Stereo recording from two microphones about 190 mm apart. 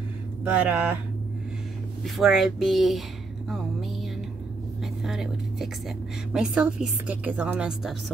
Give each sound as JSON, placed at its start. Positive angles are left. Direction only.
{"t": 0.4, "sound": "speech", "side_deg": -5}
{"t": 2.0, "sound": "a woman's voice", "side_deg": 0}
{"t": 3.4, "sound": "music", "side_deg": 0}
{"t": 5.0, "sound": "a woman's voice", "side_deg": 0}